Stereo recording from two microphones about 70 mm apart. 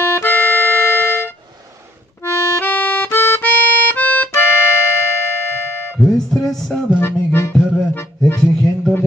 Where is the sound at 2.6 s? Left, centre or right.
Left.